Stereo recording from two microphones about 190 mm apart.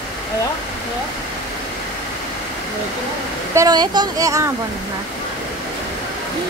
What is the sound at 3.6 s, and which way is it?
Speech, 20° right (ahead or behind).